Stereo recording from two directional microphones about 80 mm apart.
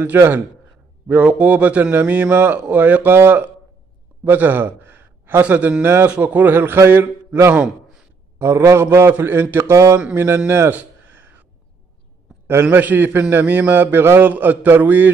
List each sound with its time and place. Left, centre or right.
0.1 s a man's voice: right
9.9 s a man's voice: right
10.2 s a man's voice: right
10.8 s a sound: right
12.6 s a man's voice: right